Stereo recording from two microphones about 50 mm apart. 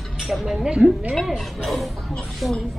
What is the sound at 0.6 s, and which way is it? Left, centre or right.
Speech, centre.